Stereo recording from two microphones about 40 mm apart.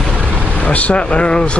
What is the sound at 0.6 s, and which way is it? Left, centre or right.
Speech, left.